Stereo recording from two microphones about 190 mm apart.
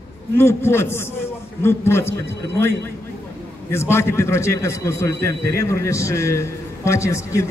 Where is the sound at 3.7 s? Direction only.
15° left (ahead or behind).